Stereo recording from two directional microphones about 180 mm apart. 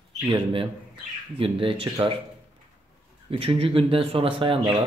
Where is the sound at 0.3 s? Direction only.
30° right (ahead or behind).